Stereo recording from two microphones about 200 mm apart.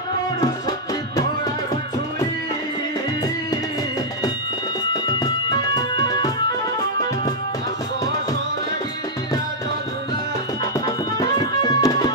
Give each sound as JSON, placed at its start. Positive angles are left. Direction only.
{"t": 0.4, "sound": "music", "side_deg": 20}
{"t": 5.0, "sound": "music", "side_deg": 20}
{"t": 11.1, "sound": "tabla", "side_deg": 20}